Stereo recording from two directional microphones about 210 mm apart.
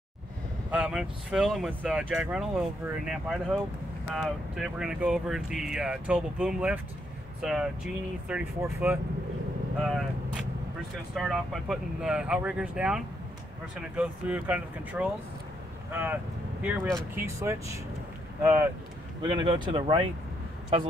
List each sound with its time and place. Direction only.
0.7 s speech: 5° right (ahead or behind)
9.8 s speech: centre (ahead or behind)
19.2 s speech: 20° right (ahead or behind)